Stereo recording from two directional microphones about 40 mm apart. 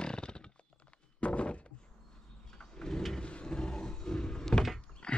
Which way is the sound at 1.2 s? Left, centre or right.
Left.